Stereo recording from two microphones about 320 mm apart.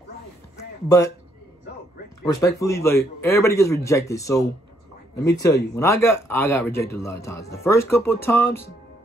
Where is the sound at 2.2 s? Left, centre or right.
Centre.